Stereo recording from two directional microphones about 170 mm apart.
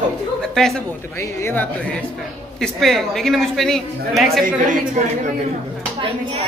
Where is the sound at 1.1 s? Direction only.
15° left (ahead or behind).